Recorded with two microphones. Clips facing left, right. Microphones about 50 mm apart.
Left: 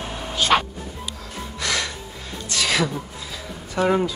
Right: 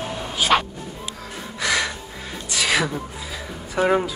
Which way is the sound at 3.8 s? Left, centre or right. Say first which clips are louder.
Right 1 dB; centre.